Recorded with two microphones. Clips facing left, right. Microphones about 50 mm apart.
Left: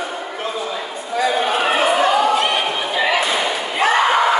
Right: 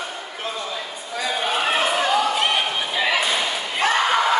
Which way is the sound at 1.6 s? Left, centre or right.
Centre.